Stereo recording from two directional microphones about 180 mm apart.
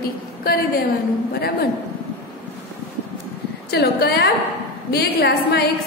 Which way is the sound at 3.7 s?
65° left (ahead or behind).